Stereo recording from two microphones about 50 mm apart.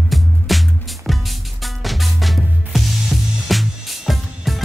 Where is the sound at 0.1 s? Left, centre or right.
Centre.